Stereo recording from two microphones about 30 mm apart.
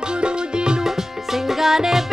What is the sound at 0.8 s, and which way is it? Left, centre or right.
Music, centre.